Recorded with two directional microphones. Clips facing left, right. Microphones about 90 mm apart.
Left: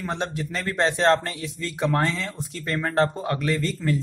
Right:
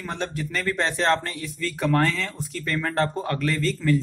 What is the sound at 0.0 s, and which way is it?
Speech, 20° left (ahead or behind).